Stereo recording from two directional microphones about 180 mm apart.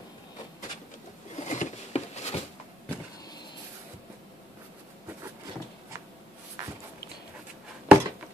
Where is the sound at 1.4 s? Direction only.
40° left (ahead or behind).